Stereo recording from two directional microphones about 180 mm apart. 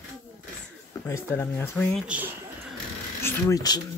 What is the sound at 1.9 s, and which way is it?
Speech, 5° right (ahead or behind).